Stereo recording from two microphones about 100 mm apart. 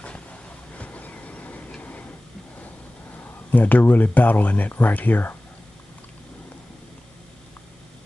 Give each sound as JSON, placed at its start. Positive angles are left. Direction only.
{"t": 0.0, "sound": "vehicle", "side_deg": 15}
{"t": 3.2, "sound": "speech", "side_deg": 15}